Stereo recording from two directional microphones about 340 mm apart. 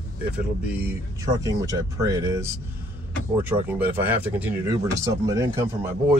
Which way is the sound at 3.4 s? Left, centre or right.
Centre.